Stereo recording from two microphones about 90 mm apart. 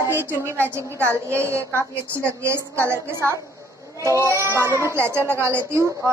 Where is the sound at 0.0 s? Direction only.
25° right (ahead or behind).